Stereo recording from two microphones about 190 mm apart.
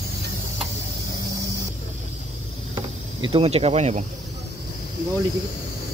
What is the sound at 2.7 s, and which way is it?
Insect, 25° right (ahead or behind).